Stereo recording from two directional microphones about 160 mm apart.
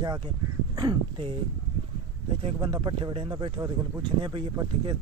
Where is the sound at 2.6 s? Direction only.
25° right (ahead or behind).